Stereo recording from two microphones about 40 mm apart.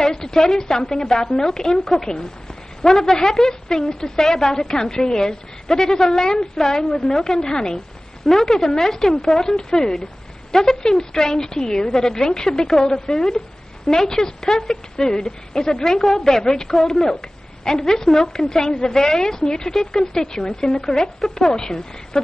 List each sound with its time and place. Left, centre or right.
0.0 s a woman's voice: centre
3.1 s a woman's voice: centre
7.2 s a woman's voice: centre
8.3 s a woman's voice: centre